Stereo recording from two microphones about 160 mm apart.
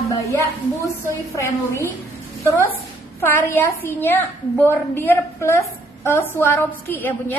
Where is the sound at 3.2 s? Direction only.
15° left (ahead or behind).